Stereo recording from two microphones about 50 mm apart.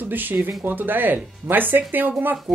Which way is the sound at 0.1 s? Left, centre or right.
Right.